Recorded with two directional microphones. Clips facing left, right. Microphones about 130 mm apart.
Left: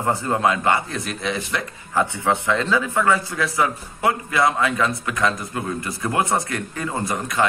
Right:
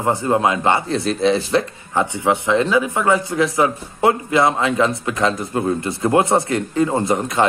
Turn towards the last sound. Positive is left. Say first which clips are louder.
# right 6 dB
turn(degrees=-25)  # may be behind; listen again after turning